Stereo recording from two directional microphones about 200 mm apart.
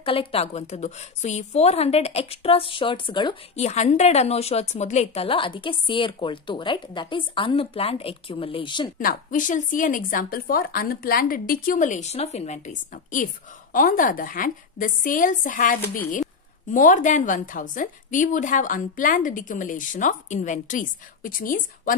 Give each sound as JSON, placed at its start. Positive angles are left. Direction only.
{"t": 0.0, "sound": "a woman's voice", "side_deg": 25}
{"t": 9.0, "sound": "a woman's voice", "side_deg": 40}